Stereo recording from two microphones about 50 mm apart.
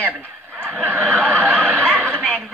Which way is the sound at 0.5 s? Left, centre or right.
Right.